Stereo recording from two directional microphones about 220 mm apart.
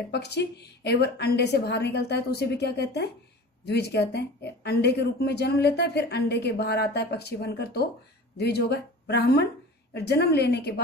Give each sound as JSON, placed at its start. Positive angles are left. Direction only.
{"t": 0.1, "sound": "speech", "side_deg": 50}